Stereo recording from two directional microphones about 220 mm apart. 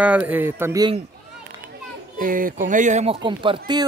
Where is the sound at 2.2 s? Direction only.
40° right (ahead or behind); by 3.8 s 20° right (ahead or behind).